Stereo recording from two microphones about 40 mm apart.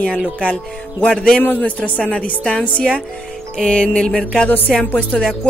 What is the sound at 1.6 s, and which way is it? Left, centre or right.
A woman's voice, left.